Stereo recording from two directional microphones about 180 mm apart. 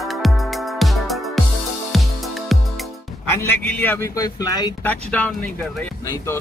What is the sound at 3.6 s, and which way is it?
Speech, 10° left (ahead or behind).